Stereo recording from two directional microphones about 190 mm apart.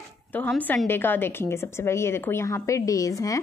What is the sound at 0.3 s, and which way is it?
A woman's voice, 10° left (ahead or behind).